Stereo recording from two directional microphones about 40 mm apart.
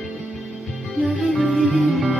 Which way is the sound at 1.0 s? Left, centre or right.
Centre.